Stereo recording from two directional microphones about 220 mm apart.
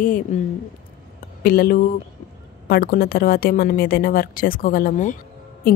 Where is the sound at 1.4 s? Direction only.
40° left (ahead or behind).